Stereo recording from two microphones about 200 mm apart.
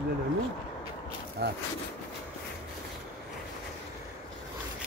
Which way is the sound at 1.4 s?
55° right (ahead or behind).